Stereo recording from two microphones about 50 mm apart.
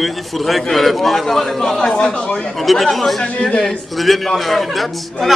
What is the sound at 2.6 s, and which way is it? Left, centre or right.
Speech, centre.